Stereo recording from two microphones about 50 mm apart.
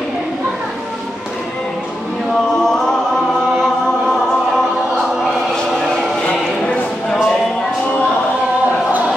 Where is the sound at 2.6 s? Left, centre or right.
Centre.